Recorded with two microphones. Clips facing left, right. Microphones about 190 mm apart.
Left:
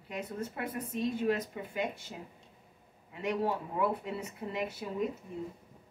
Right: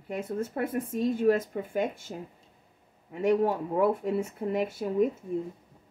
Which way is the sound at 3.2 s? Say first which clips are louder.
Right 8 dB; 45° right (ahead or behind).